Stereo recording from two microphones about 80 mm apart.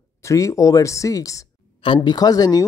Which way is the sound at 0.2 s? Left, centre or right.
Left.